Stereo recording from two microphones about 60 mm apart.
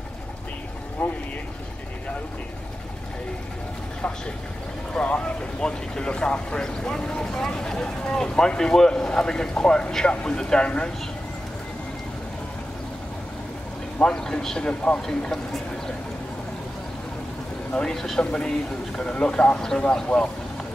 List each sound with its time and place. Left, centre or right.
1.0 s speech: left
4.9 s speech: centre
13.9 s speech: centre
17.7 s speech: centre
18.2 s speech: centre